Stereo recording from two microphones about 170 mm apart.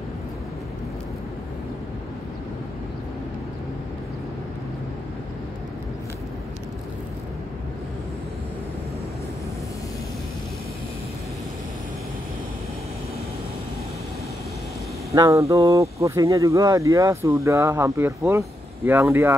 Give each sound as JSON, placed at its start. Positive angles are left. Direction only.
{"t": 15.0, "sound": "speech", "side_deg": -20}